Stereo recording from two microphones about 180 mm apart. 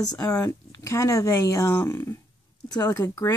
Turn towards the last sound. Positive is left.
turn(degrees=15)  # may be behind; listen again after turning